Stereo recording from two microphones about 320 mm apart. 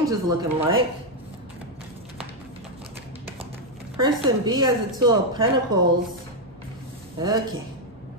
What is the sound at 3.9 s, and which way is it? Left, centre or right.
A woman's voice, centre.